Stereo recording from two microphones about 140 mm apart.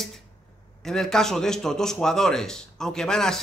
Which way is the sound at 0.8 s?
5° left (ahead or behind).